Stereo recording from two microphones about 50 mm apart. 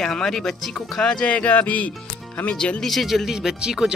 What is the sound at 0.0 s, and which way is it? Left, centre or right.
Speech, centre.